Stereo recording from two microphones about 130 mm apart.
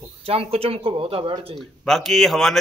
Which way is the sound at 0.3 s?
50° right (ahead or behind).